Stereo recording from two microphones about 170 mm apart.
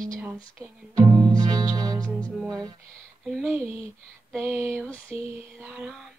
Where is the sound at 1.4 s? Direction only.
25° right (ahead or behind).